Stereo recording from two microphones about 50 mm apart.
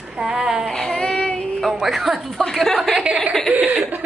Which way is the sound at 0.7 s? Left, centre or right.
Centre.